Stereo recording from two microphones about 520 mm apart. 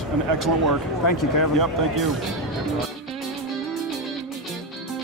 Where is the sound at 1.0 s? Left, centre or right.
Left.